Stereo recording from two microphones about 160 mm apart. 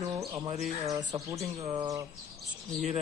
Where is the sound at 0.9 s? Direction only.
20° right (ahead or behind).